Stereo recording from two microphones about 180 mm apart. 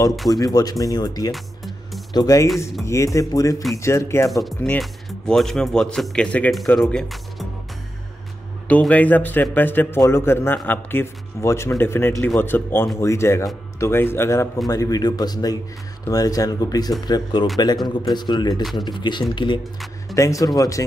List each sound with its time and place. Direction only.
0.3 s a man's voice: 20° left (ahead or behind)
4.3 s speech: centre (ahead or behind)
8.6 s a man's voice: 10° left (ahead or behind)